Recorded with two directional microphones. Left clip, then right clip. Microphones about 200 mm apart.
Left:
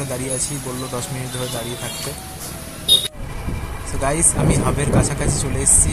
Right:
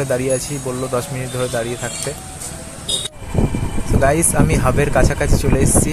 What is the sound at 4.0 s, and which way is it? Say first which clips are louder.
Speech: right 4 dB; 25° right (ahead or behind).